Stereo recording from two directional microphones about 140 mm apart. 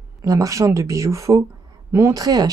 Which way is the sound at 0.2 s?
25° right (ahead or behind).